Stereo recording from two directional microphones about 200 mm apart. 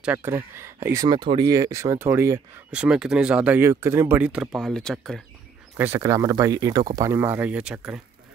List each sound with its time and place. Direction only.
0.0 s speech: 10° right (ahead or behind)
5.9 s speech: 15° right (ahead or behind)